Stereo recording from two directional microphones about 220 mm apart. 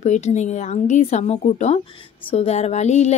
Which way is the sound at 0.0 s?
30° left (ahead or behind).